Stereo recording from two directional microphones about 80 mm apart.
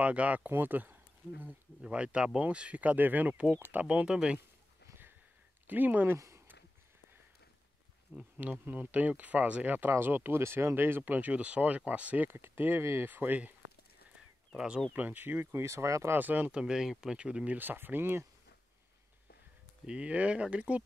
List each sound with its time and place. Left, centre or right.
0.0 s speech: centre
1.8 s speech: centre
4.8 s a sound: right
5.7 s speech: right
6.1 s speech: right
8.2 s speech: centre
15.0 s speech: right
16.2 s speech: right
19.9 s speech: centre